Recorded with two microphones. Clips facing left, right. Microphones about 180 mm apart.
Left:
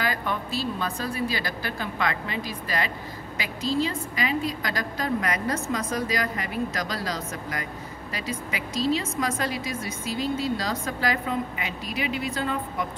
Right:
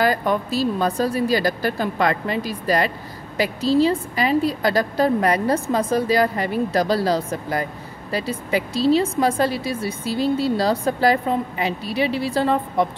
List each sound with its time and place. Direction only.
0.0 s a woman's voice: 40° right (ahead or behind)